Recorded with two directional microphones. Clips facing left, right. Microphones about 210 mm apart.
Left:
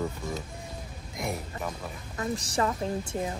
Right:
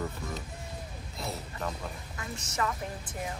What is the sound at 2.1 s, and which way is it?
A woman's voice, 35° left (ahead or behind).